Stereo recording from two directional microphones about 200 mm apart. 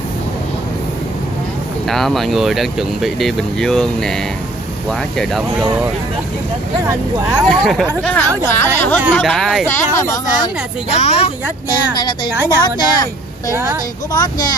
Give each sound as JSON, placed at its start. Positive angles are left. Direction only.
{"t": 1.9, "sound": "speech", "side_deg": 0}
{"t": 5.1, "sound": "speech", "side_deg": 0}
{"t": 7.2, "sound": "speech", "side_deg": 0}
{"t": 9.9, "sound": "speech", "side_deg": 15}
{"t": 11.0, "sound": "speech", "side_deg": 30}
{"t": 12.4, "sound": "a woman's voice", "side_deg": 20}
{"t": 14.1, "sound": "a woman's voice", "side_deg": 20}